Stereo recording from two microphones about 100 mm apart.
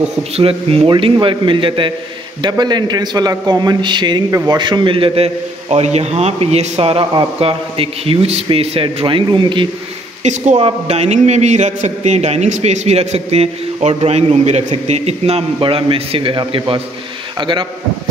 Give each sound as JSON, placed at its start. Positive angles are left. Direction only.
{"t": 0.4, "sound": "a man's voice", "side_deg": -70}
{"t": 0.8, "sound": "speech", "side_deg": -60}
{"t": 2.4, "sound": "a man's voice", "side_deg": -45}
{"t": 10.6, "sound": "a man's voice", "side_deg": -90}